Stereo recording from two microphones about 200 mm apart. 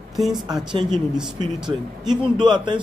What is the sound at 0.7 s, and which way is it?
Speech, 20° right (ahead or behind).